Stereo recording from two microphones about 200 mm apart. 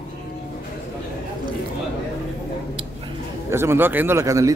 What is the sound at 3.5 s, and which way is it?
Speech, 10° right (ahead or behind).